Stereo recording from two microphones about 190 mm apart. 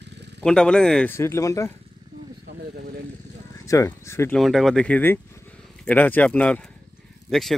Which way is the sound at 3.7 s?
15° left (ahead or behind).